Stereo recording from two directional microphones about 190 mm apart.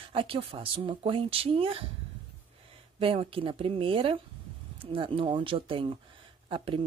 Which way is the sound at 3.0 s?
30° right (ahead or behind).